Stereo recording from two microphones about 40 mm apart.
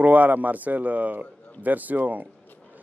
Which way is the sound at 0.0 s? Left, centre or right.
Right.